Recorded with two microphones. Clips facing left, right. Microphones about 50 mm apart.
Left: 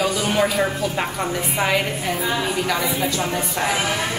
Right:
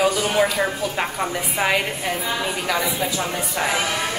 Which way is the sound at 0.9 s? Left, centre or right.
Centre.